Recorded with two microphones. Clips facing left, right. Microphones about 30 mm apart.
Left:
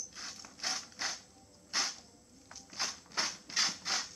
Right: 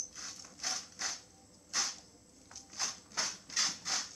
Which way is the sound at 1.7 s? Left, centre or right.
Left.